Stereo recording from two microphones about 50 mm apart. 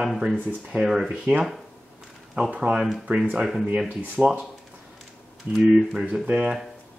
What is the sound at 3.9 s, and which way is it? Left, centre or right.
Speech, right.